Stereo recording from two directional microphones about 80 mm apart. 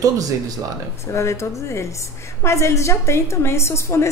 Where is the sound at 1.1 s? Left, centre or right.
Left.